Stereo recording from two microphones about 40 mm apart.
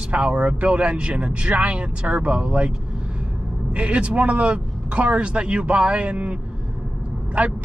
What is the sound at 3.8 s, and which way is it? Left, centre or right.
A man's voice, right.